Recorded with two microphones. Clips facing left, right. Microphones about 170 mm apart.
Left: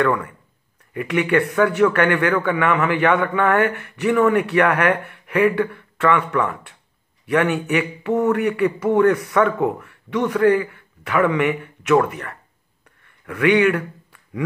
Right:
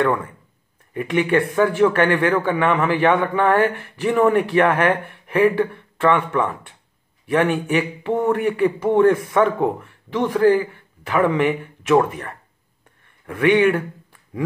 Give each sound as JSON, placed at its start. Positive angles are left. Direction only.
{"t": 0.0, "sound": "a man's voice", "side_deg": -25}